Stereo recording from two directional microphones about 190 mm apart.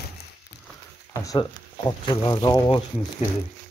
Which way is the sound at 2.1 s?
20° left (ahead or behind).